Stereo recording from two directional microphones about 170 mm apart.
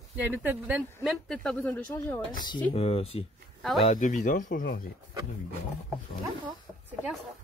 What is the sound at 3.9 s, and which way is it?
Speech, 50° left (ahead or behind).